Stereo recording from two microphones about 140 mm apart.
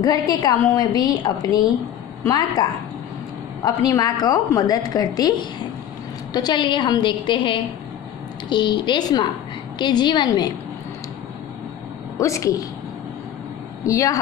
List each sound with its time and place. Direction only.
0.0 s a woman's voice: 30° left (ahead or behind)
3.6 s a woman's voice: 25° left (ahead or behind)
12.2 s a woman's voice: 20° left (ahead or behind)
13.8 s a woman's voice: 25° left (ahead or behind)